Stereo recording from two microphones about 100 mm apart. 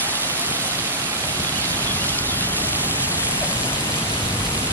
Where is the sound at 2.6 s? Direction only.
20° right (ahead or behind).